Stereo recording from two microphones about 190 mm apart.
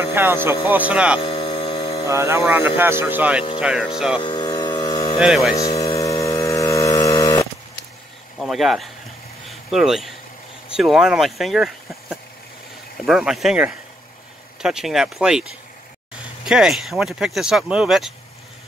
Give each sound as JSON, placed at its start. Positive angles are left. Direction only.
{"t": 0.1, "sound": "speech", "side_deg": -10}
{"t": 1.2, "sound": "hum", "side_deg": 30}
{"t": 2.0, "sound": "speech", "side_deg": -15}
{"t": 4.2, "sound": "hum", "side_deg": 25}
{"t": 5.2, "sound": "speech", "side_deg": 0}
{"t": 5.9, "sound": "a sound", "side_deg": 15}
{"t": 8.4, "sound": "speech", "side_deg": 0}
{"t": 16.4, "sound": "speech", "side_deg": -5}